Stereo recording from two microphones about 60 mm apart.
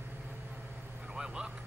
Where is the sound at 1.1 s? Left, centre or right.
Centre.